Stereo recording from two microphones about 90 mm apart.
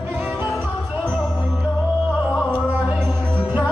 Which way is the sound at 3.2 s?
15° left (ahead or behind).